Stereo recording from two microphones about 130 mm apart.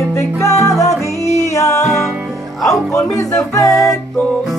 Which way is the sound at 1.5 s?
25° left (ahead or behind).